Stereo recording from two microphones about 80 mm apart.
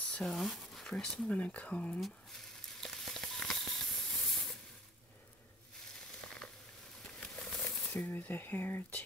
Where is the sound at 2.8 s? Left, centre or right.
Centre.